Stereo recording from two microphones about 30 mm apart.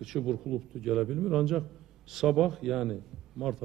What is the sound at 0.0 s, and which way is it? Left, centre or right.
A man's voice, centre.